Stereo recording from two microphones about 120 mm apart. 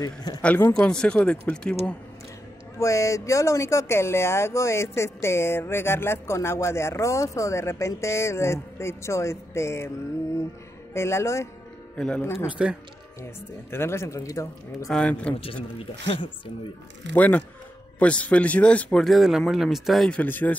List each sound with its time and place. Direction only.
0.0 s speech: 35° left (ahead or behind)
0.4 s speech: 15° left (ahead or behind)
2.8 s speech: 25° left (ahead or behind)
10.9 s speech: 20° left (ahead or behind)
12.0 s speech: 10° left (ahead or behind)
12.4 s speech: 10° right (ahead or behind)
13.2 s speech: 20° left (ahead or behind)
14.9 s speech: 10° left (ahead or behind)
17.1 s speech: 15° left (ahead or behind)
20.2 s speech: 15° left (ahead or behind)